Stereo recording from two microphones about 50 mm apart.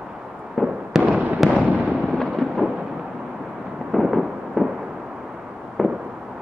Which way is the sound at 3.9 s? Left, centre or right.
Centre.